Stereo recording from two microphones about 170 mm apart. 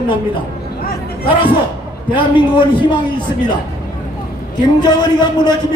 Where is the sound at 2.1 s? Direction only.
30° left (ahead or behind).